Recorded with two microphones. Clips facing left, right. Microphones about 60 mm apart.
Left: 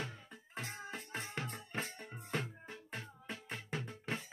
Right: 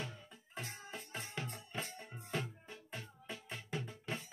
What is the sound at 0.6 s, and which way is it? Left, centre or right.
Music, left.